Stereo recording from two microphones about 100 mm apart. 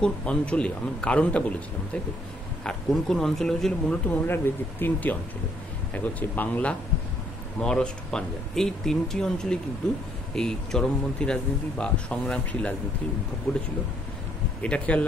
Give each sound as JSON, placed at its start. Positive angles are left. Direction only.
{"t": 0.0, "sound": "speech", "side_deg": 10}
{"t": 2.6, "sound": "speech", "side_deg": 5}
{"t": 14.6, "sound": "speech", "side_deg": 15}